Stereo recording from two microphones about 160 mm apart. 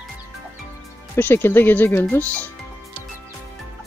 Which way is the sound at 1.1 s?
15° left (ahead or behind).